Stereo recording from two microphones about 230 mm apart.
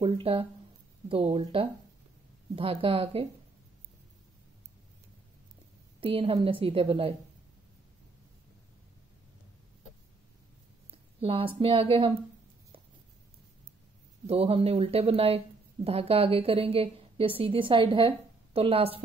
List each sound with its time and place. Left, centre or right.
0.0 s speech: right
5.9 s speech: right
10.9 s a woman's voice: right
14.2 s speech: right